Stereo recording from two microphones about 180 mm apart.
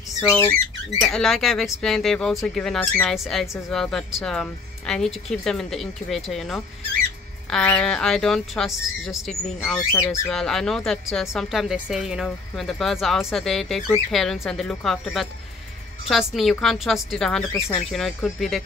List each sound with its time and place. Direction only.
0.2 s speech: 15° left (ahead or behind)
1.0 s speech: centre (ahead or behind)
17.5 s speech: 15° left (ahead or behind)
17.7 s speech: centre (ahead or behind)